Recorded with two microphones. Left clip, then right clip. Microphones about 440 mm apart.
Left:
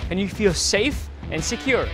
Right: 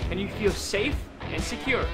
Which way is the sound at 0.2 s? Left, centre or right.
Left.